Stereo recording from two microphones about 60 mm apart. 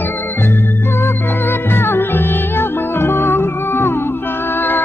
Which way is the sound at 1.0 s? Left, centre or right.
Left.